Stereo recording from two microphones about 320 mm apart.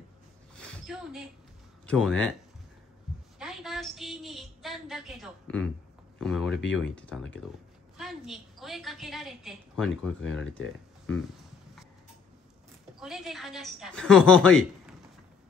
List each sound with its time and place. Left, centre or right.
0.6 s a sound: centre
1.9 s a woman's voice: centre
3.3 s a woman's voice: centre
6.5 s speech: left
6.8 s a woman's voice: centre
13.0 s a woman's voice: centre